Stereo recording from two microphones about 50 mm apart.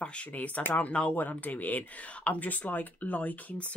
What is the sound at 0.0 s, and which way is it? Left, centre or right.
Speech, left.